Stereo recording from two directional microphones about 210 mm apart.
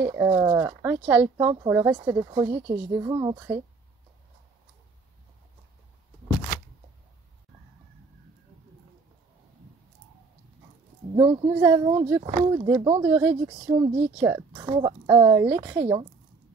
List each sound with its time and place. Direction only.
0.0 s speech: 15° right (ahead or behind)
11.1 s speech: 20° right (ahead or behind)